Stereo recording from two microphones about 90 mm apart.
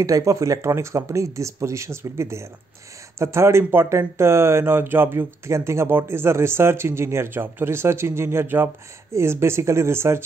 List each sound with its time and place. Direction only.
0.0 s speech: 40° right (ahead or behind)